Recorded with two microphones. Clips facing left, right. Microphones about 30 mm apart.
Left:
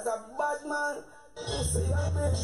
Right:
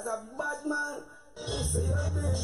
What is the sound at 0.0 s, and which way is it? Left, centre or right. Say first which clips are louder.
Speech: left 3 dB; centre.